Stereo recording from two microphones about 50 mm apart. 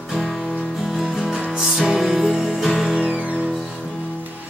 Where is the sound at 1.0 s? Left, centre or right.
Centre.